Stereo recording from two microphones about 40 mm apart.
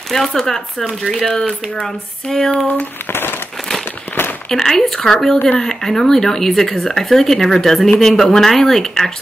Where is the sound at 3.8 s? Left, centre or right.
Left.